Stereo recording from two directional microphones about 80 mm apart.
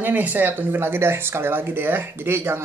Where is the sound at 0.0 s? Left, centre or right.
Right.